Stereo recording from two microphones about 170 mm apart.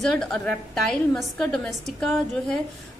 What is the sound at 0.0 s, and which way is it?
A woman's voice, 5° left (ahead or behind).